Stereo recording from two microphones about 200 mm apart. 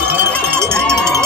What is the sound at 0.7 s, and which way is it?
Cowbell, 5° left (ahead or behind).